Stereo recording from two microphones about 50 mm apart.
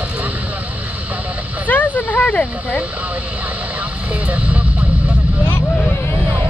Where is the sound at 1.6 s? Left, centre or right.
Left.